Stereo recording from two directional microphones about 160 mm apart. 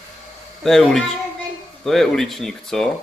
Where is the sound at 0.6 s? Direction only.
Centre (ahead or behind).